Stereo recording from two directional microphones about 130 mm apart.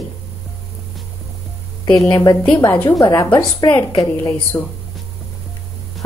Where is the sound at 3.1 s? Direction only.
20° left (ahead or behind).